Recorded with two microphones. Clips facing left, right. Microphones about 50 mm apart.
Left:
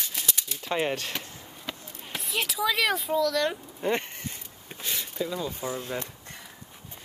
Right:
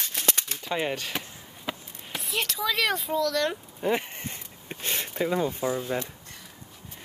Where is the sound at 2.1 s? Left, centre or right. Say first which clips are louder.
Even; centre.